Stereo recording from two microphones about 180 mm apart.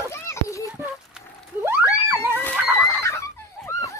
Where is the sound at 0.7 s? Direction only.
10° right (ahead or behind).